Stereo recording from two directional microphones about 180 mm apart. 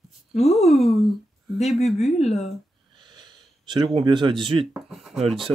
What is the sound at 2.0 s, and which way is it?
Speech, 35° left (ahead or behind).